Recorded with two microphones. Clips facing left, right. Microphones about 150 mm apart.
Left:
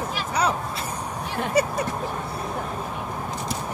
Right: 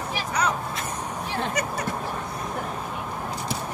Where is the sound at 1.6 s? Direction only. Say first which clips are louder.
Left 12 dB; 30° left (ahead or behind).